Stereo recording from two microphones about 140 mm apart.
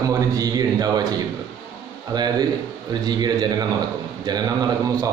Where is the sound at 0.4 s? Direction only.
25° right (ahead or behind).